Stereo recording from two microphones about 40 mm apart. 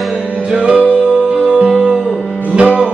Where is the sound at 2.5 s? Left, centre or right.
Right.